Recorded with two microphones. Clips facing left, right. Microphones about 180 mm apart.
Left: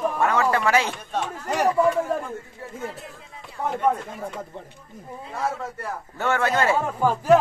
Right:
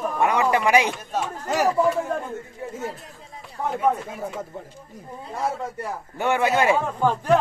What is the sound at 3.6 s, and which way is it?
Speech, centre (ahead or behind).